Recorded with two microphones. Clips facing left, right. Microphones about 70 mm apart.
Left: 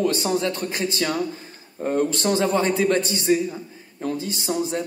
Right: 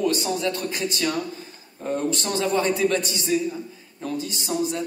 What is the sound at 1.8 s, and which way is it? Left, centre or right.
Speech, left.